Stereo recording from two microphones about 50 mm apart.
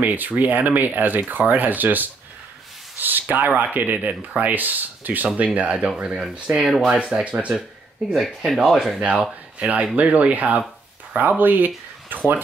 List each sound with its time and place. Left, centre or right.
0.0 s speech: right
8.5 s speech: centre
9.6 s speech: right